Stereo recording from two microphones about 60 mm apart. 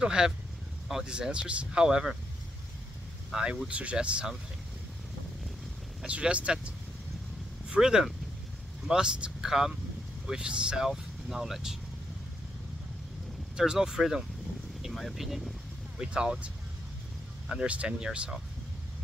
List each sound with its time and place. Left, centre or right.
0.0 s speech: centre
3.6 s speech: centre
6.0 s speech: centre
7.7 s speech: centre
10.9 s speech: centre
13.6 s speech: centre
16.0 s speech: centre
17.5 s speech: centre